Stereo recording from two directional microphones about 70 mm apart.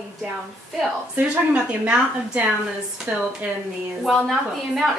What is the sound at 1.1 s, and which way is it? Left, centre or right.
A woman's voice, centre.